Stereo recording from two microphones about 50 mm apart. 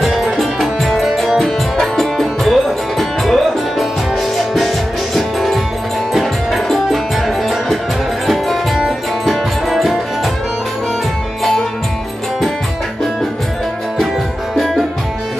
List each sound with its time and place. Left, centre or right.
0.0 s music: centre
8.3 s music: centre
14.6 s music: centre